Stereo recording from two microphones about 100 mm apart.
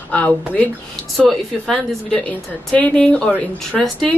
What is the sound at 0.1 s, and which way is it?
Speech, 15° left (ahead or behind).